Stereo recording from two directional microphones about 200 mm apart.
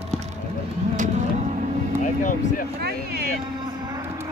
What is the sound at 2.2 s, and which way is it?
Speech, 40° left (ahead or behind).